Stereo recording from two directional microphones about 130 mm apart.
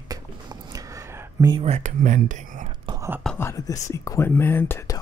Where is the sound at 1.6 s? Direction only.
60° right (ahead or behind); by 2.7 s 75° right (ahead or behind).